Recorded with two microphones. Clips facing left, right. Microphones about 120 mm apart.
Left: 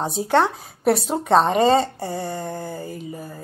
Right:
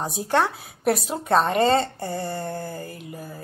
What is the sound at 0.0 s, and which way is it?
A woman's voice, 5° right (ahead or behind).